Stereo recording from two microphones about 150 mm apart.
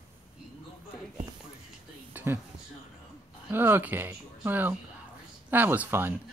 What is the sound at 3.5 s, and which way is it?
Speech, 15° right (ahead or behind).